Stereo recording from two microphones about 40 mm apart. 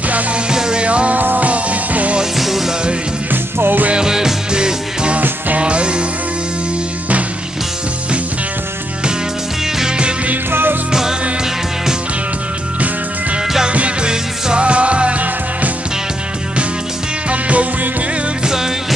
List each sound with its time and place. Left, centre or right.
0.5 s music: centre
0.8 s music: right
1.1 s music: right
2.3 s music: centre
3.5 s music: right
3.9 s music: centre
9.8 s music: right
10.5 s music: right
10.9 s music: centre
13.7 s music: right
17.3 s music: right
18.4 s music: centre